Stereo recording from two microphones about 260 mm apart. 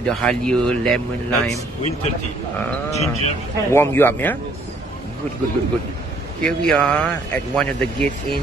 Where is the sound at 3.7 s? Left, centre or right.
Centre.